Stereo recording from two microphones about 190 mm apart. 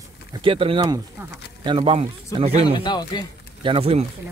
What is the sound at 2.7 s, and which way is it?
Speech, 25° left (ahead or behind).